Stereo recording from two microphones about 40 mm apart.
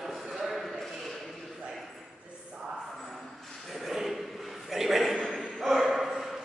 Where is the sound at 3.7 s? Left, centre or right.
Centre.